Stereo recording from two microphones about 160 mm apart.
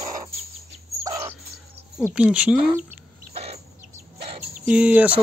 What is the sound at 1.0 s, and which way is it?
Bird, 20° right (ahead or behind).